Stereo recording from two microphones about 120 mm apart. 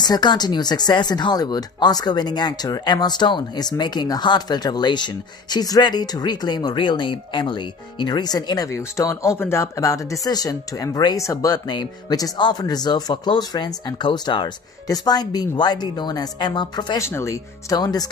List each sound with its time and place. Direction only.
0.0 s speech: 35° left (ahead or behind)
17.0 s speech: 25° left (ahead or behind)